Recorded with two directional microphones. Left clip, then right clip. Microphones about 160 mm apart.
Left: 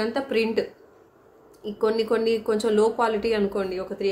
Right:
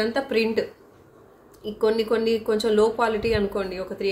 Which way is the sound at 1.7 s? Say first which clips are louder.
Right 1 dB; 15° left (ahead or behind).